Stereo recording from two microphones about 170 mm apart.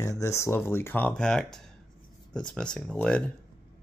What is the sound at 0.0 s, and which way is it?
Speech, 20° left (ahead or behind).